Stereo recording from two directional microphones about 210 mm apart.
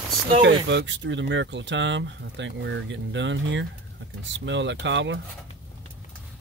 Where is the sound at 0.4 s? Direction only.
60° right (ahead or behind).